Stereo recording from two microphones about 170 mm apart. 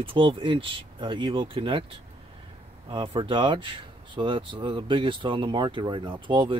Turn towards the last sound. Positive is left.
turn(degrees=-30)  # may be behind; listen again after turning